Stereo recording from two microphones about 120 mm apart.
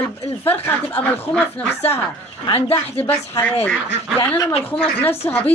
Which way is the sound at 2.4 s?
50° left (ahead or behind).